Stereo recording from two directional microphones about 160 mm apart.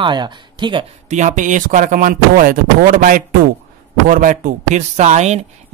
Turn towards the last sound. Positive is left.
turn(degrees=-45)  # may be behind; listen again after turning